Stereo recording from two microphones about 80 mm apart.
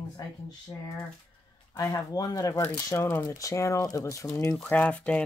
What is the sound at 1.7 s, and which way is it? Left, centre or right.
Speech, left.